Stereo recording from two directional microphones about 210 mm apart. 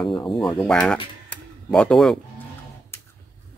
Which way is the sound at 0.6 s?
5° left (ahead or behind).